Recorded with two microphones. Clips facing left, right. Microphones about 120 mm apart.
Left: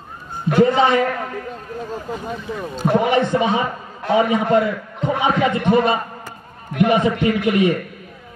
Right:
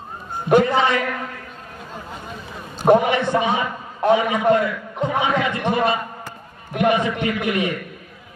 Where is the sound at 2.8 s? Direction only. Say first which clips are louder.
Right 4 dB; 45° right (ahead or behind).